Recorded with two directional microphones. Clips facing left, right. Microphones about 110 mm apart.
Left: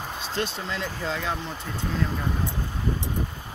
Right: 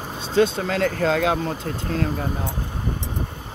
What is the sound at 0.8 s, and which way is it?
Speech, 85° right.